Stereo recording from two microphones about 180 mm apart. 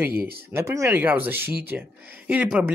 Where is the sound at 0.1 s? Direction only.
60° right (ahead or behind).